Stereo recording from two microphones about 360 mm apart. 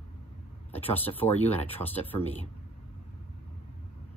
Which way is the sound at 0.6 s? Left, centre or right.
Centre.